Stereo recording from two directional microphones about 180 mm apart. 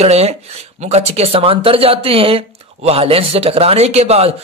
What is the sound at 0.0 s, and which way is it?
Speech, 35° right (ahead or behind).